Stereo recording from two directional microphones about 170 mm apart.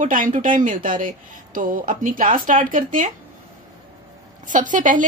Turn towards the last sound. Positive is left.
turn(degrees=-50)  # may be behind; listen again after turning